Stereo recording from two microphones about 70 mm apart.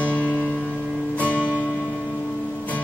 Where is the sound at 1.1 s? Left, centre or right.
Left.